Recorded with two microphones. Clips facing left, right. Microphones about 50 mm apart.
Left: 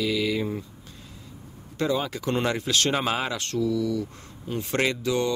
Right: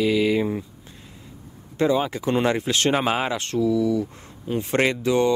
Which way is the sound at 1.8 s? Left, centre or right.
Right.